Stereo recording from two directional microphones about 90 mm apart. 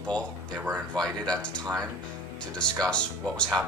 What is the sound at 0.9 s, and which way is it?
Speech, 10° left (ahead or behind).